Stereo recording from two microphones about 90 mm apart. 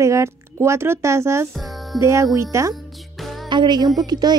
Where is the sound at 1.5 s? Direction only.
Centre (ahead or behind).